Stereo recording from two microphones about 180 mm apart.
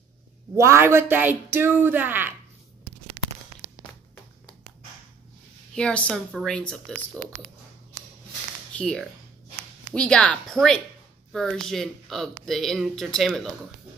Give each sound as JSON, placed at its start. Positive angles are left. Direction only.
{"t": 0.6, "sound": "speech", "side_deg": -15}
{"t": 5.8, "sound": "speech", "side_deg": 5}
{"t": 8.7, "sound": "speech", "side_deg": 5}